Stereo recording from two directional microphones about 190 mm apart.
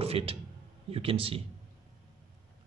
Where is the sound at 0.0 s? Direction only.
30° right (ahead or behind).